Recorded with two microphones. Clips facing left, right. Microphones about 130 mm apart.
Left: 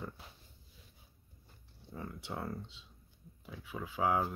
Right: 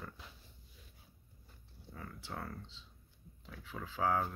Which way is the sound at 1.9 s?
20° left (ahead or behind).